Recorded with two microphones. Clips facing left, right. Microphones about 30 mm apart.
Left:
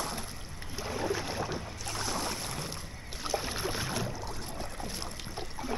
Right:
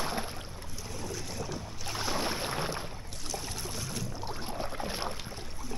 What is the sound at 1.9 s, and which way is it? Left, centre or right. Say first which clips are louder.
Boat: right 2 dB; centre.